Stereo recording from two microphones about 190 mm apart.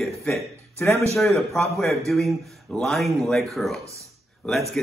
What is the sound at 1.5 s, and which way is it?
Speech, centre (ahead or behind).